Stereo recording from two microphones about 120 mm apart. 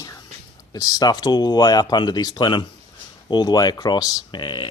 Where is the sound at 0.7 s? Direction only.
30° left (ahead or behind).